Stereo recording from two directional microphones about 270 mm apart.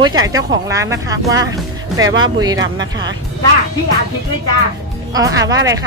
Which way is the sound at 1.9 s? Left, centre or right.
Right.